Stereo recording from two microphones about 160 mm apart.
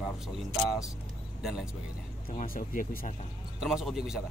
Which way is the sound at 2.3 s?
60° left (ahead or behind).